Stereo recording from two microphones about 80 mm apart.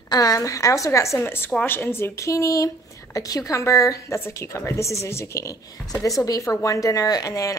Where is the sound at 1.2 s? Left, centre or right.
Left.